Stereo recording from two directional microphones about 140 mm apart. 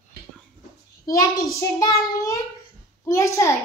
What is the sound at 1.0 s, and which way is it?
Speech, 25° left (ahead or behind).